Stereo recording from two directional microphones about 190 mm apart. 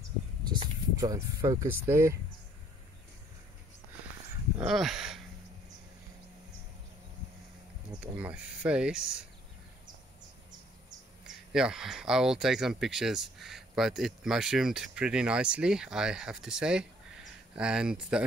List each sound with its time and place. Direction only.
0.4 s speech: 20° right (ahead or behind)
4.6 s speech: centre (ahead or behind)
7.9 s speech: 10° right (ahead or behind)
11.2 s speech: 5° right (ahead or behind)